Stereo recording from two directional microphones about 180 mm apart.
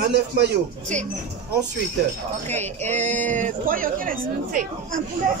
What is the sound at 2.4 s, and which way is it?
A man's voice, 40° right (ahead or behind).